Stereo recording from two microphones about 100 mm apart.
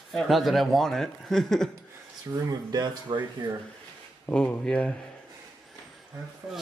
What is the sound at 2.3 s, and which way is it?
Speech, 35° right (ahead or behind).